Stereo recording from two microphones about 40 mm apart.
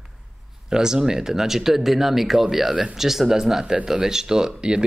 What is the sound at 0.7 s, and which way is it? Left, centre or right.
Speech, centre.